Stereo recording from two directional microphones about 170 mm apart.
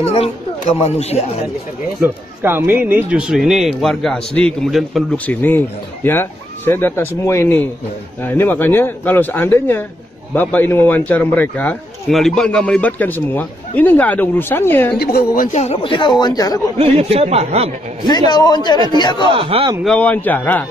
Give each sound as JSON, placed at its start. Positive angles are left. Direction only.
{"t": 0.0, "sound": "speech", "side_deg": 35}
{"t": 2.0, "sound": "a man's voice", "side_deg": -15}
{"t": 15.0, "sound": "speech", "side_deg": 60}
{"t": 16.7, "sound": "speech", "side_deg": -35}
{"t": 18.0, "sound": "speech", "side_deg": 25}
{"t": 19.2, "sound": "speech", "side_deg": -30}
{"t": 19.8, "sound": "a man's voice", "side_deg": 5}